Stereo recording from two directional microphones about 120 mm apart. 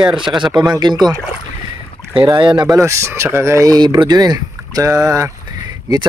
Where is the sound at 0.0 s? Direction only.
45° right (ahead or behind).